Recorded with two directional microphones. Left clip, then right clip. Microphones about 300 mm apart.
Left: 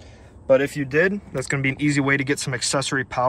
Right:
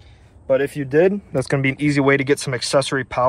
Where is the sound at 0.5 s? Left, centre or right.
Centre.